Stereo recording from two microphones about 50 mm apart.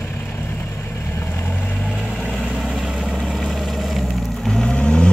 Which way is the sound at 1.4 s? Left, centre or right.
Left.